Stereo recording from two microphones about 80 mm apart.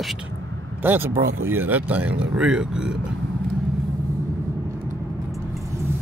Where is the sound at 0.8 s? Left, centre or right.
Right.